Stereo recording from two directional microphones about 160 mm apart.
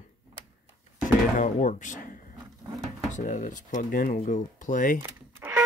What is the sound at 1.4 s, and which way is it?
Speech, 50° left (ahead or behind).